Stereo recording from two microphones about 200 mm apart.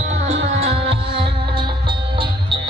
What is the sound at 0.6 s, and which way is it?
Music, 30° right (ahead or behind).